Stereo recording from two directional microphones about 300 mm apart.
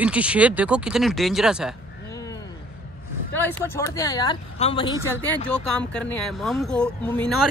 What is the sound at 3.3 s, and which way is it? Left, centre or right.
Speech, centre.